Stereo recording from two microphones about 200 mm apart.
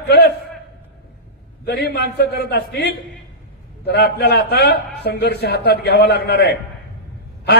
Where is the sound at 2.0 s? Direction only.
55° left (ahead or behind).